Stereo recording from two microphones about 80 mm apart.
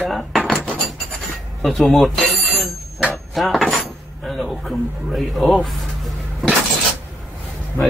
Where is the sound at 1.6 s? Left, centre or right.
Centre.